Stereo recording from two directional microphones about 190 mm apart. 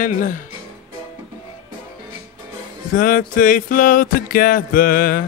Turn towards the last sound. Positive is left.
turn(degrees=50)  # may be behind; listen again after turning